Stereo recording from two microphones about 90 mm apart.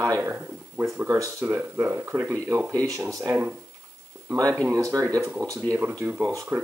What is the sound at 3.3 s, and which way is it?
Speech, 15° right (ahead or behind).